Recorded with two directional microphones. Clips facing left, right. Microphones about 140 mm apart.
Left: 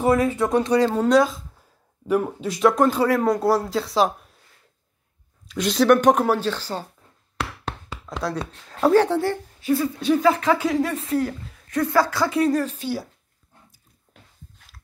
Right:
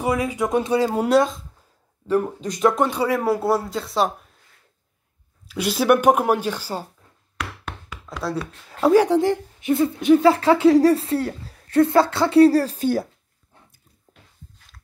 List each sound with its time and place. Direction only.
0.0 s a woman's voice: 10° right (ahead or behind)
5.5 s a woman's voice: 5° right (ahead or behind)
7.3 s knock: 30° left (ahead or behind)
8.6 s a woman's voice: 10° right (ahead or behind)
10.2 s a woman's voice: 30° right (ahead or behind); by 13.1 s 50° right (ahead or behind)